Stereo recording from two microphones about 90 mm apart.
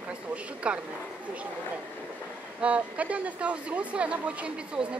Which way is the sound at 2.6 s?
15° right (ahead or behind).